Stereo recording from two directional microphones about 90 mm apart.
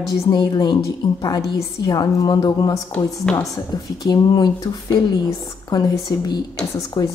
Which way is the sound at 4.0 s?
50° left (ahead or behind).